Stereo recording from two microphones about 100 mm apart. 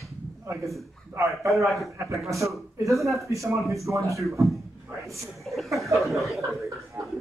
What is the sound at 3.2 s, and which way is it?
Speech, 30° right (ahead or behind).